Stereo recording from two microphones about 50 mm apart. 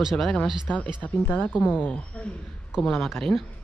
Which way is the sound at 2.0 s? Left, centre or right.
Left.